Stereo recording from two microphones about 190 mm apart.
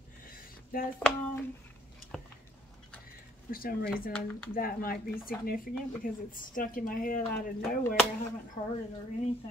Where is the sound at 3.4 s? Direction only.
50° left (ahead or behind).